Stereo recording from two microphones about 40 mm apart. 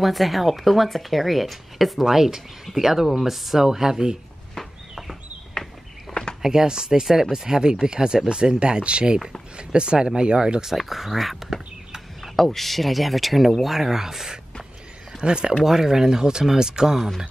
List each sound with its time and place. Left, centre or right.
0.0 s speech: centre
6.1 s a sound: centre
6.4 s speech: centre
10.8 s speech: centre
12.4 s speech: centre
15.1 s speech: right
15.6 s speech: centre